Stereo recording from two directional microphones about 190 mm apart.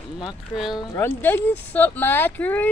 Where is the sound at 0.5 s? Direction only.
Centre (ahead or behind).